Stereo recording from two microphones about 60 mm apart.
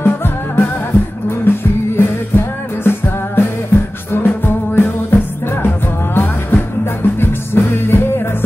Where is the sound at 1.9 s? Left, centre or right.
Left.